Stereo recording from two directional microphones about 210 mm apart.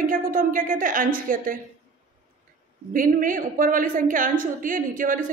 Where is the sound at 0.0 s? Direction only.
40° right (ahead or behind).